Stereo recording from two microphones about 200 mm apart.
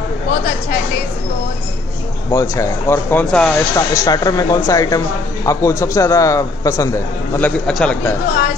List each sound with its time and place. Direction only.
2.3 s speech: 15° left (ahead or behind)
3.7 s speech: 20° left (ahead or behind)
7.3 s speech: 5° left (ahead or behind)